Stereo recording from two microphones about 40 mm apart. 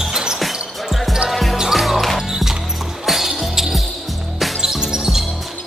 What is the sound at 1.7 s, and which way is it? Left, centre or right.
Music, centre.